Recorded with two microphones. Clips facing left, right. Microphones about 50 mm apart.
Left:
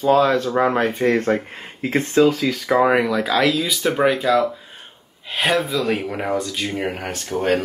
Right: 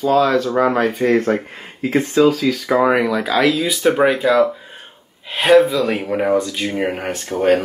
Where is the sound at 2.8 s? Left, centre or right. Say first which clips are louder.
Right 1 dB; centre.